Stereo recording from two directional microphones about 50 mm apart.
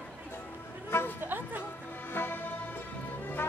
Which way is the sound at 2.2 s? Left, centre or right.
Left.